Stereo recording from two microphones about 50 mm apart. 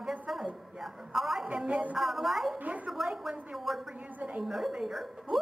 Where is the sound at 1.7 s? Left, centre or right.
Right.